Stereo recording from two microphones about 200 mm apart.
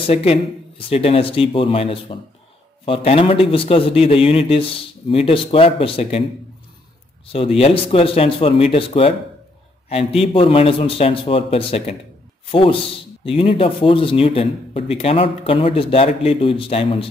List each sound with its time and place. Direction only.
0.0 s speech: 30° left (ahead or behind)
7.3 s speech: 30° left (ahead or behind)